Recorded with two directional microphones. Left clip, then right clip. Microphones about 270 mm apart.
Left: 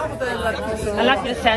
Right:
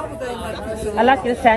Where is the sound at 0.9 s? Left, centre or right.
Centre.